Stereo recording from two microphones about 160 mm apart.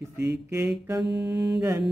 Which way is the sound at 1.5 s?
15° right (ahead or behind).